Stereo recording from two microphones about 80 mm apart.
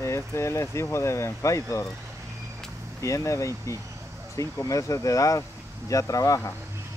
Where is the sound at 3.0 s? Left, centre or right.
Left.